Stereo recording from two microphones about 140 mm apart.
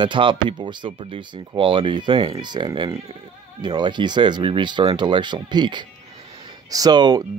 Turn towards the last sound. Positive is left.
turn(degrees=-30)  # may be behind; listen again after turning